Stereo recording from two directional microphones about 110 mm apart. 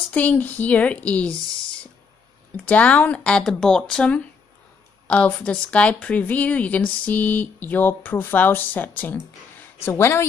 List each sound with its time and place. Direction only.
0.1 s speech: 15° left (ahead or behind)